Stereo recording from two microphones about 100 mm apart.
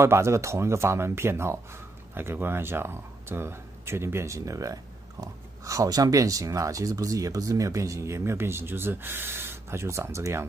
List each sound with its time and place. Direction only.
0.0 s speech: 30° right (ahead or behind)